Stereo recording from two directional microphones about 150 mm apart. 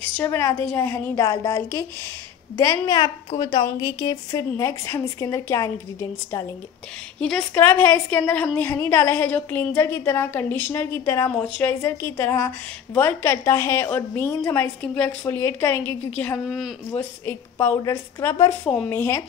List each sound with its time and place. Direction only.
0.2 s a woman's voice: 15° left (ahead or behind)
7.2 s a woman's voice: 5° left (ahead or behind)
16.4 s speech: centre (ahead or behind)
16.9 s a woman's voice: 15° left (ahead or behind)